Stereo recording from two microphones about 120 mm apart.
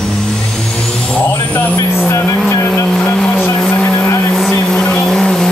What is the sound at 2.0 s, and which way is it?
Vehicle, 15° left (ahead or behind).